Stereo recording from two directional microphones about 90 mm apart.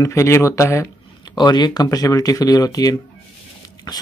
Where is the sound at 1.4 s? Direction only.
50° left (ahead or behind).